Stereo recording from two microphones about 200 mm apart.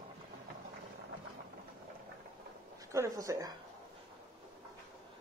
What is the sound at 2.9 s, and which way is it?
Speech, 15° right (ahead or behind).